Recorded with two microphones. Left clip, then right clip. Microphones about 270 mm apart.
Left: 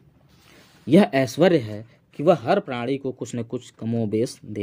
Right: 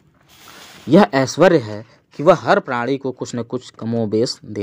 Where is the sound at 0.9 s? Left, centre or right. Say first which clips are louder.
Right 5 dB; centre.